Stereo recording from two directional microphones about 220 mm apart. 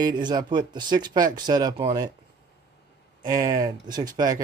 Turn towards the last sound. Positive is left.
turn(degrees=-15)  # may be behind; listen again after turning